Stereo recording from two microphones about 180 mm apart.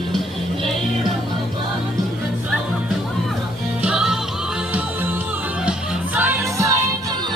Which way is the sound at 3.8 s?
5° right (ahead or behind).